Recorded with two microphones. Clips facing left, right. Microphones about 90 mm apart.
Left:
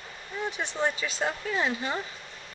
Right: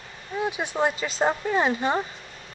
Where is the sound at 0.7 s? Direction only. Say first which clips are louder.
Right 4 dB; 45° right (ahead or behind).